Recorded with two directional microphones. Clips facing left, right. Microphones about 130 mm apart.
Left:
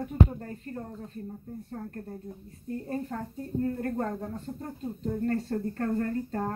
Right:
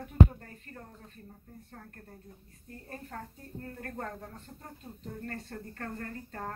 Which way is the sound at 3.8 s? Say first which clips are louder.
Left 9 dB; 30° left (ahead or behind).